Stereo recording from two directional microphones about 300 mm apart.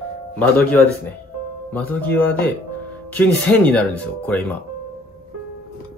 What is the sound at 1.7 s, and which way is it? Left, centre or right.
Speech, centre.